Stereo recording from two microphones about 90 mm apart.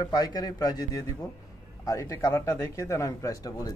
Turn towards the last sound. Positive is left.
turn(degrees=45)  # may be behind; listen again after turning